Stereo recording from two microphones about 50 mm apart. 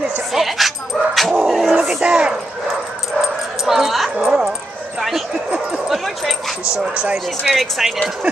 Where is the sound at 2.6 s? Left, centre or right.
Centre.